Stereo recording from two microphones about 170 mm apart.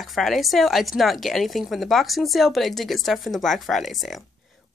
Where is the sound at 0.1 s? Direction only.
Centre (ahead or behind).